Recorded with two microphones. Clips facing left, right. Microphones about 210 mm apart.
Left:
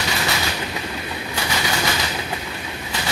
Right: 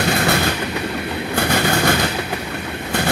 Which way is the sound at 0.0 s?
55° right (ahead or behind).